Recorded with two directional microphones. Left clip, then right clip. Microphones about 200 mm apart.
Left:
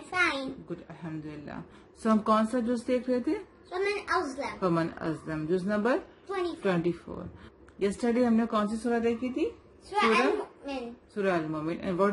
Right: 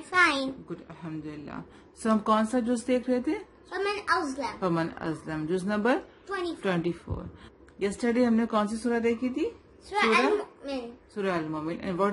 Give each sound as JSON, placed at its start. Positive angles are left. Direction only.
{"t": 0.7, "sound": "a woman's voice", "side_deg": 0}
{"t": 3.8, "sound": "a woman's voice", "side_deg": -60}
{"t": 4.6, "sound": "a woman's voice", "side_deg": 0}
{"t": 9.8, "sound": "a woman's voice", "side_deg": -60}
{"t": 11.1, "sound": "a woman's voice", "side_deg": 0}